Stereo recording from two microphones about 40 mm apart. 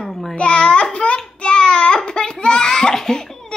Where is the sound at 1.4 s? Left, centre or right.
Left.